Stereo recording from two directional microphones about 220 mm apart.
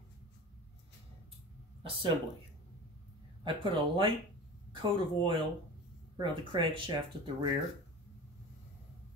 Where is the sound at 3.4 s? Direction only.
20° right (ahead or behind).